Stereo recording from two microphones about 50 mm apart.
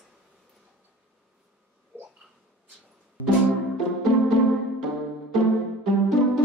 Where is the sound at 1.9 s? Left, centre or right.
Right.